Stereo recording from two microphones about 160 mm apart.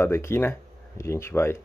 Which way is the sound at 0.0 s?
15° left (ahead or behind).